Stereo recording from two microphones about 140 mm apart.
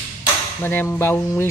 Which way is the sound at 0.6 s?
15° left (ahead or behind).